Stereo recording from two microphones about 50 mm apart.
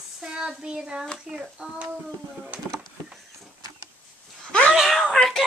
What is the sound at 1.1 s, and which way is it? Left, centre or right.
Speech, centre.